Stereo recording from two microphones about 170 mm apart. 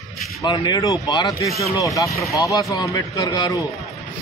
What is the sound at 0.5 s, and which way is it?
Speech, 25° left (ahead or behind).